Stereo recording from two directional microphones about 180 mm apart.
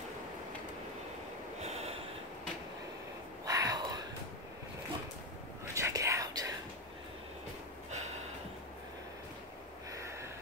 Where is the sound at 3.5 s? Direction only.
20° right (ahead or behind).